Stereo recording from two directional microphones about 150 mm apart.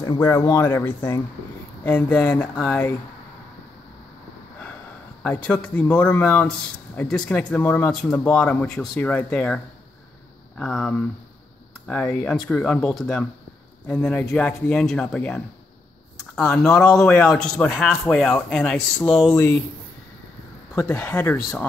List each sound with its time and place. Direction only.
0.0 s a man's voice: 25° left (ahead or behind); by 2.8 s centre (ahead or behind)
5.2 s a man's voice: 10° left (ahead or behind)
10.6 s a man's voice: 5° left (ahead or behind)
19.3 s a man's voice: 15° left (ahead or behind)
20.7 s a man's voice: 15° left (ahead or behind)